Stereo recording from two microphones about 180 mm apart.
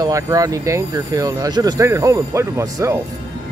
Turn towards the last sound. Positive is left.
turn(degrees=-15)  # may be behind; listen again after turning